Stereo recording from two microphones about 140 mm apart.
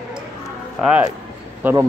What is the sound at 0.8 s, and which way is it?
Speech, 10° right (ahead or behind).